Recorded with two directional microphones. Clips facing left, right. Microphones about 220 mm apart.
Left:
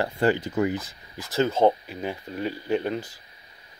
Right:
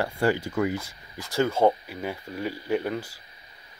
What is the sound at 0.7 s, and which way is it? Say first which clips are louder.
Speech: left 1 dB; 10° right (ahead or behind).